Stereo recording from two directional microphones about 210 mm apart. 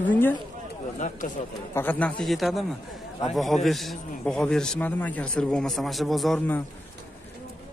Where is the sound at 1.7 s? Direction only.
10° left (ahead or behind).